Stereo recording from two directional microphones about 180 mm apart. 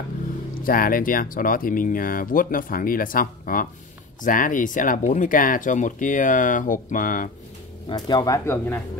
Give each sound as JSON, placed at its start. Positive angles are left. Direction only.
{"t": 0.6, "sound": "speech", "side_deg": 55}
{"t": 7.9, "sound": "speech", "side_deg": 20}